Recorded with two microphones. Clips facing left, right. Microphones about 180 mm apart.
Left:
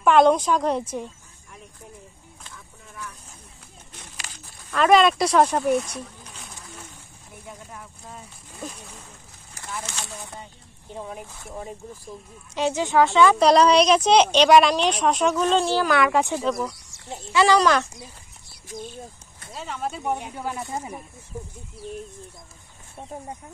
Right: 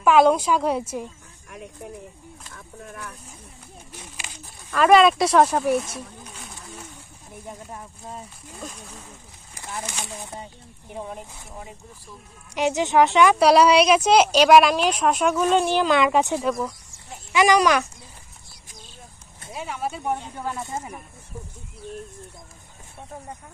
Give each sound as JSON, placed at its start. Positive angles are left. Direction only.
{"t": 0.0, "sound": "a woman's voice", "side_deg": -5}
{"t": 1.5, "sound": "a sound", "side_deg": -65}
{"t": 4.6, "sound": "speech", "side_deg": -5}
{"t": 7.4, "sound": "speech", "side_deg": -35}
{"t": 9.6, "sound": "speech", "side_deg": -15}
{"t": 12.5, "sound": "speech", "side_deg": -15}
{"t": 18.5, "sound": "a sound", "side_deg": 55}
{"t": 19.5, "sound": "speech", "side_deg": -10}
{"t": 20.2, "sound": "speech", "side_deg": 10}